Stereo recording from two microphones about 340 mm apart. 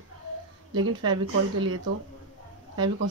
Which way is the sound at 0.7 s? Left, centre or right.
Centre.